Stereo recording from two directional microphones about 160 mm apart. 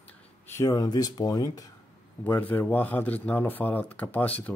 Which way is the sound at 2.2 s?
15° left (ahead or behind).